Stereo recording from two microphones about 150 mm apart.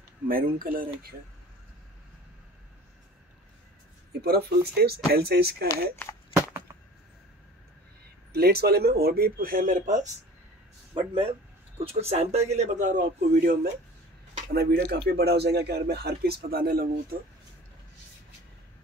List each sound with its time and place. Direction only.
0.3 s speech: 75° right (ahead or behind)
4.2 s speech: 90° right
8.3 s speech: 90° right; by 10.0 s 60° right (ahead or behind)
11.0 s a man's voice: 40° right (ahead or behind); by 13.6 s 65° right (ahead or behind)
14.5 s speech: 90° right